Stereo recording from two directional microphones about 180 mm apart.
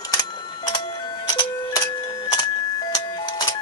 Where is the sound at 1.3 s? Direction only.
20° left (ahead or behind).